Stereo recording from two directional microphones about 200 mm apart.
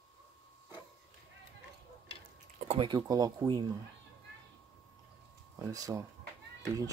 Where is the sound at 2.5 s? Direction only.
35° right (ahead or behind).